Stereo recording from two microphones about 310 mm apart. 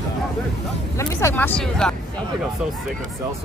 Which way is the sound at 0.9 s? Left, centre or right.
Centre.